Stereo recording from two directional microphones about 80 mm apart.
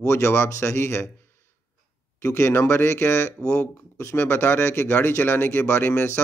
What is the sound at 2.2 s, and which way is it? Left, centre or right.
Speech, left.